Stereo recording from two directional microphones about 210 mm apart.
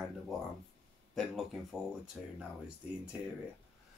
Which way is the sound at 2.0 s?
5° right (ahead or behind).